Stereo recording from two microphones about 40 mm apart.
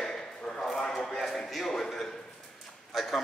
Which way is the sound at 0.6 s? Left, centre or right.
Centre.